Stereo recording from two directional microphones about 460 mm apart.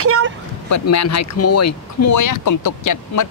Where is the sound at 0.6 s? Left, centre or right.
Left.